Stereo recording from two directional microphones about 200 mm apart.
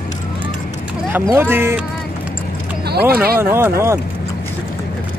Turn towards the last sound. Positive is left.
turn(degrees=-15)  # may be behind; listen again after turning